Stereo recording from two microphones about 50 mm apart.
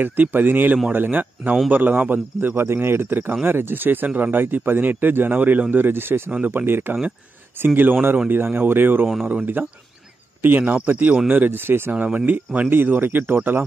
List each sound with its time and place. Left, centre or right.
0.0 s speech: right
2.4 s speech: right
11.9 s speech: right
12.6 s speech: right